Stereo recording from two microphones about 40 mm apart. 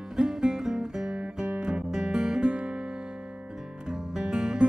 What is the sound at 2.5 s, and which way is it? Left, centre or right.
Music, right.